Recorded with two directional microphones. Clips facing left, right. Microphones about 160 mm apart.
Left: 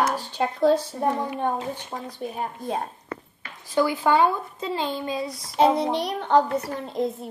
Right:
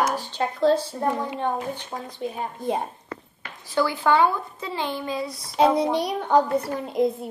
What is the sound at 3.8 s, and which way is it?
A woman's voice, 20° left (ahead or behind).